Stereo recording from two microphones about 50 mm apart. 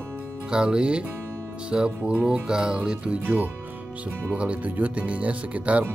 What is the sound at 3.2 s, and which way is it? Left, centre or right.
Speech, right.